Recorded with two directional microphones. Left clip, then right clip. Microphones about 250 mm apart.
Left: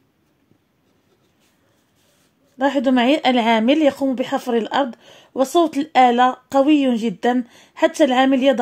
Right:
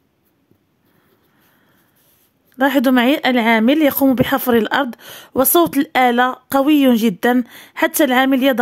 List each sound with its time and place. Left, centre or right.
2.5 s speech: right